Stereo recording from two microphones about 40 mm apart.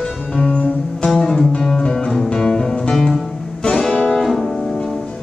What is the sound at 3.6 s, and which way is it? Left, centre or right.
Music, centre.